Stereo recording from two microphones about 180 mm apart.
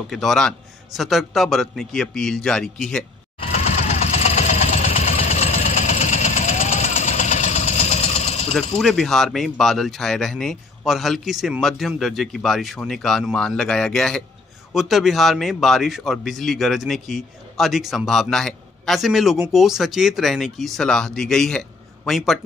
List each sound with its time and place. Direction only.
0.1 s a man's voice: centre (ahead or behind)
3.5 s vehicle: 40° left (ahead or behind)
8.5 s a man's voice: centre (ahead or behind)